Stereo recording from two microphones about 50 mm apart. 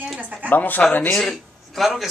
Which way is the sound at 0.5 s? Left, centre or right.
Left.